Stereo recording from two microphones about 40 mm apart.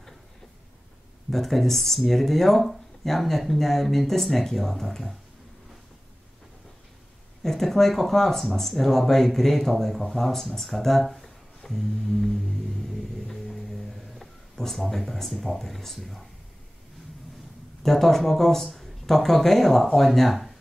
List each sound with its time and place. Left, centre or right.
1.3 s speech: centre
7.4 s speech: centre
13.3 s a sound: centre
17.8 s speech: centre